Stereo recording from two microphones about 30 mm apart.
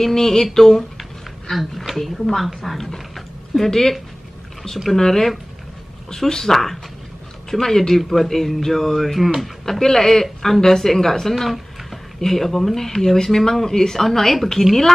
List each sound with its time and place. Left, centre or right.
0.0 s speech: centre
1.9 s a sound: centre
2.8 s dog: centre
4.9 s speech: centre
8.0 s a sound: centre
9.7 s a woman's voice: centre